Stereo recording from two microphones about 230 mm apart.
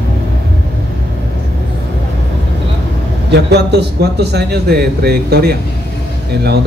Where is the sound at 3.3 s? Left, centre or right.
Right.